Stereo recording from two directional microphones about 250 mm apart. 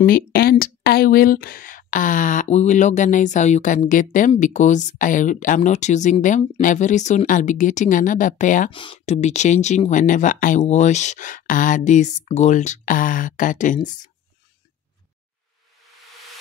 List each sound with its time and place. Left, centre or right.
0.0 s speech: left